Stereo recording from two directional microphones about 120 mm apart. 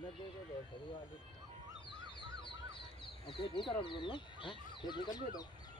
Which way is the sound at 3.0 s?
45° left (ahead or behind).